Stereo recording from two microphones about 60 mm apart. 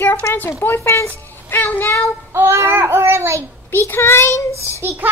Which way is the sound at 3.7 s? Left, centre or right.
Left.